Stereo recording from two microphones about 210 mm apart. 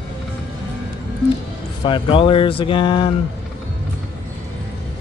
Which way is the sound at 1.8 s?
25° left (ahead or behind).